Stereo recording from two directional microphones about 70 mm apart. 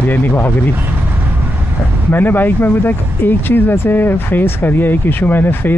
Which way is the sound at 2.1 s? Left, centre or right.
Left.